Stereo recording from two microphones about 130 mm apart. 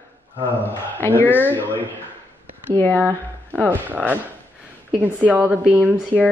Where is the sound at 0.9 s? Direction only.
15° left (ahead or behind).